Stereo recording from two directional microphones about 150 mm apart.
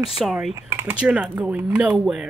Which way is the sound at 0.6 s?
20° right (ahead or behind).